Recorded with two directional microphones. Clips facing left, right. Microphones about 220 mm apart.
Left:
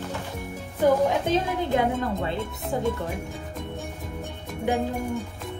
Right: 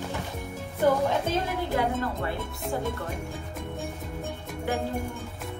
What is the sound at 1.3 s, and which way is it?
A woman's voice, 20° left (ahead or behind).